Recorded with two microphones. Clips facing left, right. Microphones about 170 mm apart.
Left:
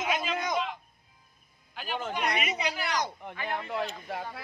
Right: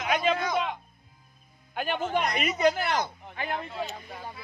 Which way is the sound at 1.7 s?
55° right (ahead or behind).